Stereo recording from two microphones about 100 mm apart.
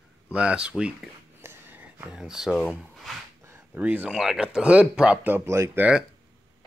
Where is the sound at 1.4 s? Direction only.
20° right (ahead or behind).